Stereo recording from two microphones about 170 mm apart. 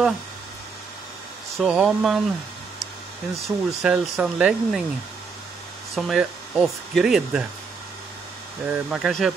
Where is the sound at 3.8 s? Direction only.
5° right (ahead or behind).